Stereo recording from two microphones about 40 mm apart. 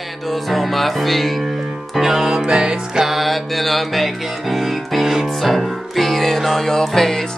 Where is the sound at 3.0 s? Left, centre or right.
Centre.